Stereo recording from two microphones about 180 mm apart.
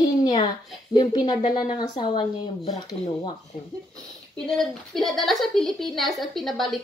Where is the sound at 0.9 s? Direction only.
20° left (ahead or behind).